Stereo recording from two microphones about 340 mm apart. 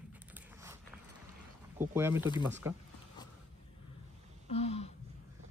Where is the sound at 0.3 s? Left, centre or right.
Centre.